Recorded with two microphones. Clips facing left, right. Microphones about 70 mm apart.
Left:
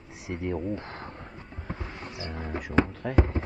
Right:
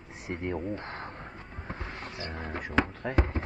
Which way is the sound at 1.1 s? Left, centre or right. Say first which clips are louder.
Even; centre.